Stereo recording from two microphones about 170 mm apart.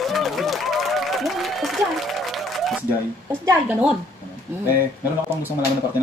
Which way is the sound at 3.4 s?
20° right (ahead or behind).